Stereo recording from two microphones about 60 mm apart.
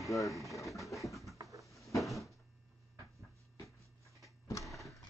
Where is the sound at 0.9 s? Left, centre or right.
Centre.